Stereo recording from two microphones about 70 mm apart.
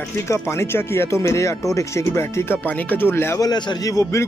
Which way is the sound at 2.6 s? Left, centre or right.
Left.